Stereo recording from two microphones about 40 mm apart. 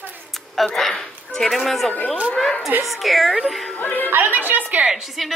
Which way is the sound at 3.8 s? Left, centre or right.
Left.